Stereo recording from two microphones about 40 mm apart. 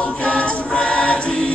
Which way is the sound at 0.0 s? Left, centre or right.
Left.